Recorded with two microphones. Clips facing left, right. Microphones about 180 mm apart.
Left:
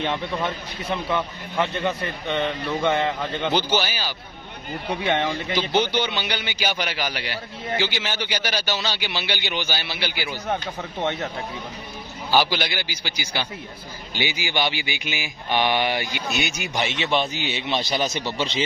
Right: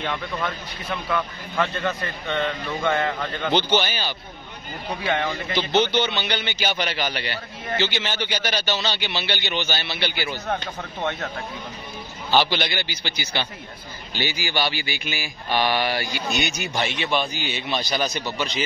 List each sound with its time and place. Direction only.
0.0 s a man's voice: 25° left (ahead or behind)
5.0 s a man's voice: 20° left (ahead or behind)
5.3 s a man's voice: 10° left (ahead or behind)
12.3 s a man's voice: 10° left (ahead or behind)
16.3 s a man's voice: 5° left (ahead or behind); by 18.6 s 25° left (ahead or behind)